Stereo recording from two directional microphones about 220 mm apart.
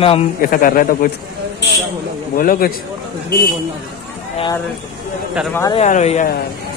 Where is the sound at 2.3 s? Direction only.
40° left (ahead or behind).